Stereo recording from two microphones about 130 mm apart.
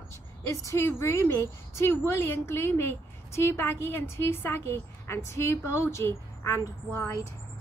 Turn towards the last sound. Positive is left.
turn(degrees=20)  # may be behind; listen again after turning